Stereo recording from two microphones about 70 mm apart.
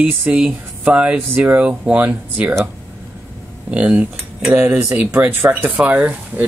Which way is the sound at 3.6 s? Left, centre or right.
Centre.